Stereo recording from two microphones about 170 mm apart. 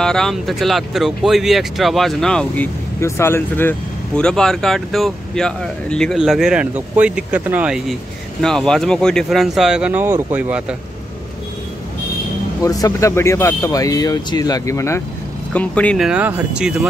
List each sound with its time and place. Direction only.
0.0 s speech: 5° left (ahead or behind)
8.4 s speech: 5° left (ahead or behind)
12.6 s speech: 20° left (ahead or behind)
16.1 s speech: 10° right (ahead or behind)